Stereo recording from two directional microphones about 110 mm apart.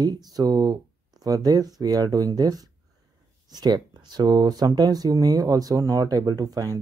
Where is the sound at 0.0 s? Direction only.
35° right (ahead or behind).